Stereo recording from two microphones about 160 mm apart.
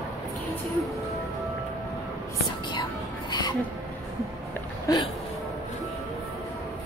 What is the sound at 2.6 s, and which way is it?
Music, 25° left (ahead or behind).